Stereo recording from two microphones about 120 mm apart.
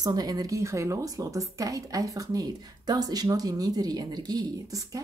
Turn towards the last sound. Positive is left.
turn(degrees=-30)  # may be behind; listen again after turning